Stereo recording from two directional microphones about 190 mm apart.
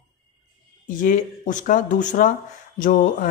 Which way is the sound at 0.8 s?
45° left (ahead or behind).